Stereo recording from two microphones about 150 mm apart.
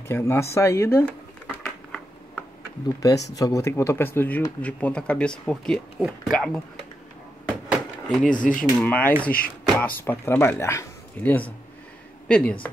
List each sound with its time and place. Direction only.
0.1 s speech: 15° left (ahead or behind)
1.6 s a sound: 5° left (ahead or behind)
3.0 s speech: 25° left (ahead or behind); by 6.6 s 5° left (ahead or behind)
7.4 s a sound: 5° right (ahead or behind)
8.2 s speech: 60° left (ahead or behind)
8.8 s speech: 10° left (ahead or behind)